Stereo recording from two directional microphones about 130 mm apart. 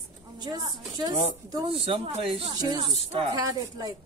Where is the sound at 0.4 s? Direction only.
30° right (ahead or behind).